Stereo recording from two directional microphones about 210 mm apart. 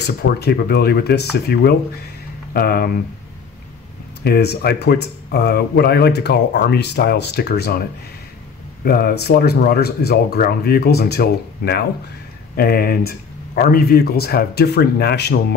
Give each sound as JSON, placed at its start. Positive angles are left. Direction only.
{"t": 0.0, "sound": "speech", "side_deg": 50}
{"t": 4.2, "sound": "speech", "side_deg": 50}
{"t": 8.8, "sound": "speech", "side_deg": 45}